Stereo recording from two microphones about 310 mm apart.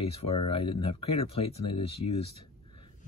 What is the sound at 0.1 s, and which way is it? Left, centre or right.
Speech, centre.